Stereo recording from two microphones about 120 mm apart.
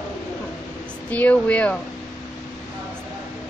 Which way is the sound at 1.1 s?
10° left (ahead or behind).